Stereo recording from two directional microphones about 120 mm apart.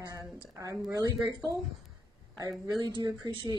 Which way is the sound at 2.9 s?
40° right (ahead or behind).